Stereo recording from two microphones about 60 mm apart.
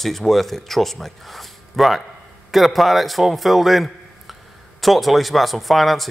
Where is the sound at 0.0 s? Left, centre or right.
Centre.